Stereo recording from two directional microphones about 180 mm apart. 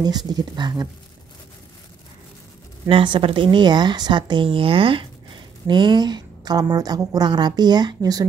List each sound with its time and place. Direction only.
0.3 s a woman's voice: 20° right (ahead or behind)
2.9 s a woman's voice: 30° right (ahead or behind)